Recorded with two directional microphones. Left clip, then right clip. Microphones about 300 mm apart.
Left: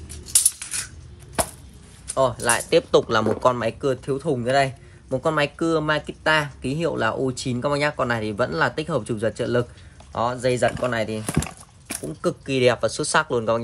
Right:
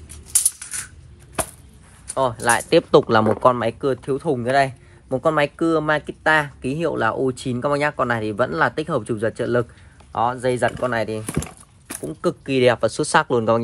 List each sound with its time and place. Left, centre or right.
0.3 s coin: centre
2.1 s a man's voice: centre
11.3 s wood: centre
12.2 s speech: centre